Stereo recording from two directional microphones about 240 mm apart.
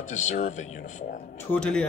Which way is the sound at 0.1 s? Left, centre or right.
Left.